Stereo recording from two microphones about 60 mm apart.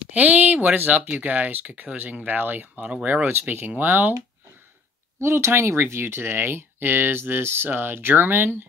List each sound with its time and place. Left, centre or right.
0.1 s speech: right
5.2 s speech: right